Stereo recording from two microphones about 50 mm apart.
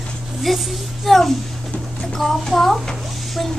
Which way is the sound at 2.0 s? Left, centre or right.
Centre.